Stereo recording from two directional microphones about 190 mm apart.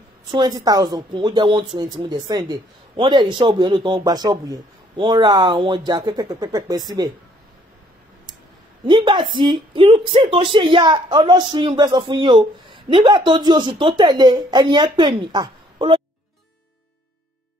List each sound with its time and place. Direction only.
0.3 s speech: 20° right (ahead or behind)
8.8 s speech: 25° right (ahead or behind)